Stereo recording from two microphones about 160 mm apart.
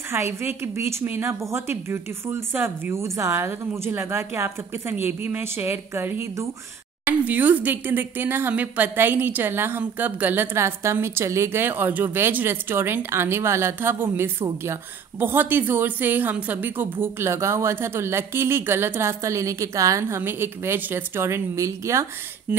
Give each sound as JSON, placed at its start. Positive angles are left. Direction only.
{"t": 0.1, "sound": "speech", "side_deg": -15}
{"t": 22.5, "sound": "speech", "side_deg": -5}